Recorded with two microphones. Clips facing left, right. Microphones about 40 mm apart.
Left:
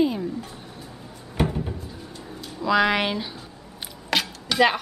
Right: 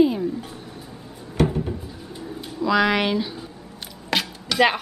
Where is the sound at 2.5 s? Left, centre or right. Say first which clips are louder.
Right 1 dB; centre.